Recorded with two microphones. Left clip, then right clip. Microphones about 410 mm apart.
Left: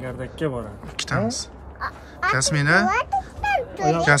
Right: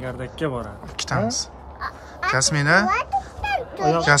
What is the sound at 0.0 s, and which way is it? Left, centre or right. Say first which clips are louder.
Speech: even; centre.